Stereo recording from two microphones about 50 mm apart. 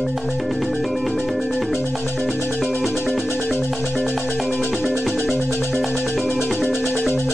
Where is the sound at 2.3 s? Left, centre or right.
Left.